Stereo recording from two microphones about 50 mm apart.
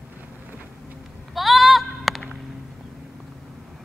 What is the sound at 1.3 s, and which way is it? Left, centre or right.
Music, centre.